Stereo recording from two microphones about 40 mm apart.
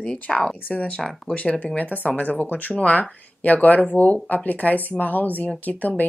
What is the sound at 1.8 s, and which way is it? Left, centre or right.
Speech, left.